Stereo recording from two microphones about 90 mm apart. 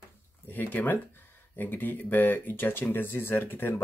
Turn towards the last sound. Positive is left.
turn(degrees=25)  # may be behind; listen again after turning